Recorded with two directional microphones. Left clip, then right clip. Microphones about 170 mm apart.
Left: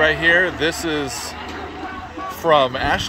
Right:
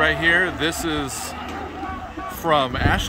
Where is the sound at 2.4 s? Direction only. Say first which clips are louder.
Left 4 dB; 15° right (ahead or behind).